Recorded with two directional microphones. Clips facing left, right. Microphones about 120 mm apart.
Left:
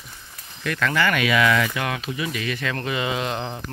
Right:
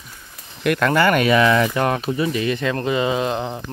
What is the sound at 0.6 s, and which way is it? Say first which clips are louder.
Speech: right 6 dB; 55° right (ahead or behind).